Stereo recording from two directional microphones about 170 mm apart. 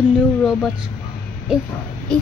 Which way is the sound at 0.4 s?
Centre (ahead or behind).